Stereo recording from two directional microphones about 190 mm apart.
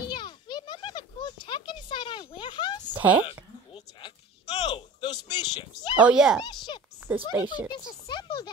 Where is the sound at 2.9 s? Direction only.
10° right (ahead or behind).